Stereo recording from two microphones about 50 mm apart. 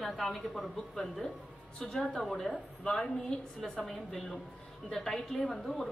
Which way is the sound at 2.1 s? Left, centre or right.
Centre.